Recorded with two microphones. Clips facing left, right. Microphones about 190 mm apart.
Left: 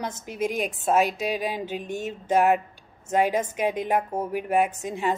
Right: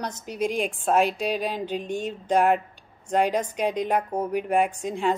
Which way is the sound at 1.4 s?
10° left (ahead or behind).